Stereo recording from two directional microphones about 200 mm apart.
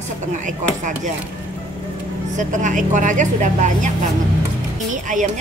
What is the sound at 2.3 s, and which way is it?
A woman's voice, 40° right (ahead or behind).